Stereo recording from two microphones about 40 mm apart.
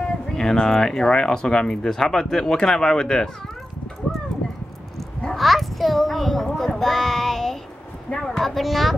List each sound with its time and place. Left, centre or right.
0.4 s speech: centre
5.3 s a child's voice: centre